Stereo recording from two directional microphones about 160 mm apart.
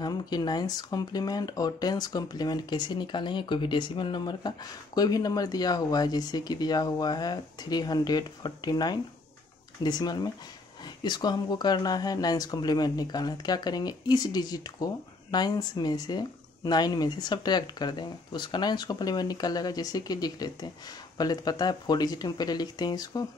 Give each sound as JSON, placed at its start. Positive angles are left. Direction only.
{"t": 0.0, "sound": "speech", "side_deg": 25}